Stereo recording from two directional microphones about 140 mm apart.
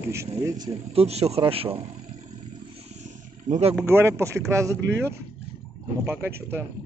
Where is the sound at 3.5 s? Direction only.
50° right (ahead or behind).